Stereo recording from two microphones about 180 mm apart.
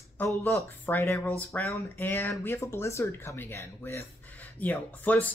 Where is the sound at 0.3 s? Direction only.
10° left (ahead or behind).